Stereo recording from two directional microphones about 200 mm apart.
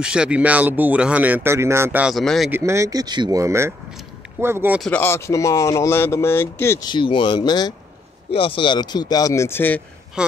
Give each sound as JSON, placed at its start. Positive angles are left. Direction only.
{"t": 0.0, "sound": "speech", "side_deg": -5}
{"t": 2.5, "sound": "speech", "side_deg": -15}
{"t": 4.8, "sound": "speech", "side_deg": 10}
{"t": 10.2, "sound": "speech", "side_deg": -5}